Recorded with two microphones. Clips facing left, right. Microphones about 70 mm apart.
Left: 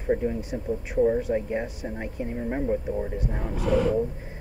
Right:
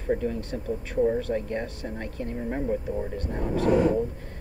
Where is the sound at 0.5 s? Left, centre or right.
Centre.